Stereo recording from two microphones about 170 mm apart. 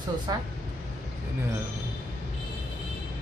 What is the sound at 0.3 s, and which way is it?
Speech, 25° right (ahead or behind).